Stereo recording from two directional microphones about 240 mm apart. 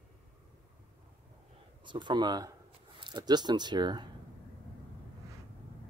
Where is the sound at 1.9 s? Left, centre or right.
Centre.